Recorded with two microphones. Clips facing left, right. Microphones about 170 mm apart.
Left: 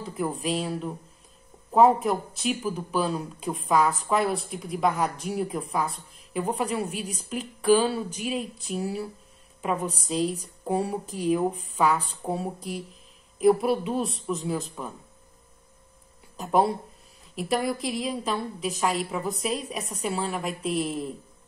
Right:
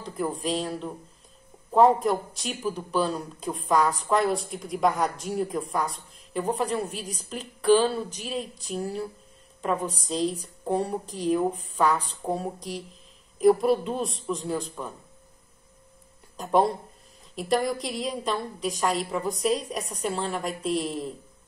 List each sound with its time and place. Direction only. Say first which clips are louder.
0.0 s a man's voice: even; 5° left (ahead or behind)
7.2 s a sound: even; 5° left (ahead or behind)
10.7 s a man's voice: even; 5° left (ahead or behind)
16.3 s a man's voice: even; 5° left (ahead or behind)